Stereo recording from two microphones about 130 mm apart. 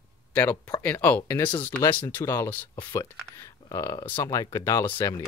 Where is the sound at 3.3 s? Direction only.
25° left (ahead or behind).